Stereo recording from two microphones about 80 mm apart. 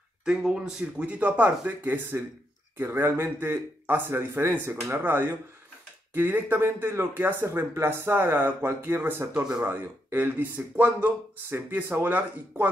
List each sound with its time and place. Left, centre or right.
0.2 s speech: centre; by 9.1 s right
9.3 s speech: centre
9.7 s speech: right